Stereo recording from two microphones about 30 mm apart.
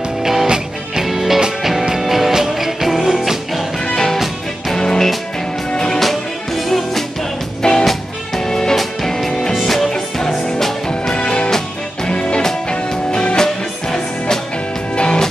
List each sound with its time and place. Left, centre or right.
0.2 s music: centre
3.8 s music: left
5.9 s music: centre
7.6 s music: left; by 9.8 s centre
9.8 s music: centre
11.1 s music: left
13.4 s music: centre
15.0 s music: left